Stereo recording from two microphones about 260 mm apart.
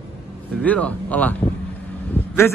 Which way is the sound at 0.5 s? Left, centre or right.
Centre.